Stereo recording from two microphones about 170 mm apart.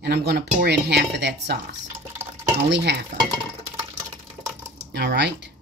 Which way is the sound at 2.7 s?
80° right.